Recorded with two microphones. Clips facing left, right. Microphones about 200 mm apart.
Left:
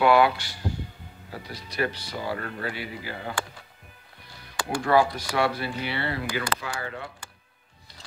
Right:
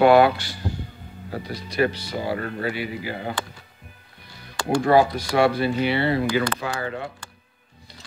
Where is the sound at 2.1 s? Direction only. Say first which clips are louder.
Right 5 dB; 30° right (ahead or behind).